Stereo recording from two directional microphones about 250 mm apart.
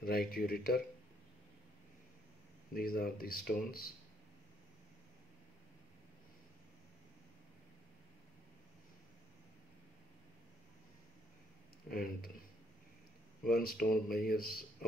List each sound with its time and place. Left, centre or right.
0.0 s speech: left
2.7 s speech: left
11.9 s speech: left
13.5 s speech: left